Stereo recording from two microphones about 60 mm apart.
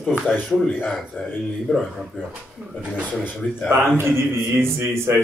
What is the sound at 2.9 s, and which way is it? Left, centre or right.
Speech, right.